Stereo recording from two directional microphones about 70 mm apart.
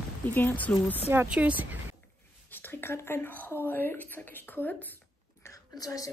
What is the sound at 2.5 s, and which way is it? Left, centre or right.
Speech, left.